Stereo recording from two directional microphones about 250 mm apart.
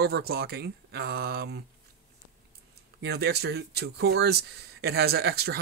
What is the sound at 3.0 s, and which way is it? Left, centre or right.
Speech, right.